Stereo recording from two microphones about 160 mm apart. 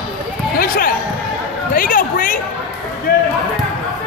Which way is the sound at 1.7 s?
60° left (ahead or behind).